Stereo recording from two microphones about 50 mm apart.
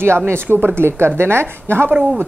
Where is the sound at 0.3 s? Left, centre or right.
Right.